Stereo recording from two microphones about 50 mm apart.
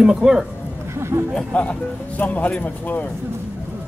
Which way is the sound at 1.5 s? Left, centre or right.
Left.